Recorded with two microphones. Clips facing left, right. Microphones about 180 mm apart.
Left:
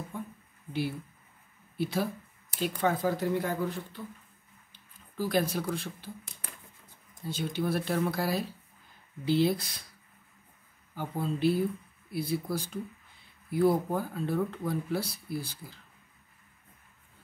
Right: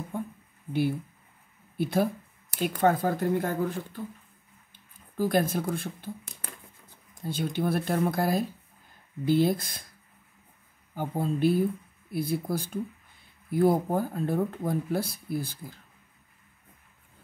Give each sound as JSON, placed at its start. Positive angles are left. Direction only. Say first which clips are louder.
{"t": 0.1, "sound": "a sound", "louder": "right 7 dB", "side_deg": -50}
{"t": 1.8, "sound": "speech", "louder": "right 5 dB", "side_deg": -50}
{"t": 7.2, "sound": "speech", "louder": "right 3 dB", "side_deg": -55}
{"t": 11.0, "sound": "speech", "louder": "right 4 dB", "side_deg": -50}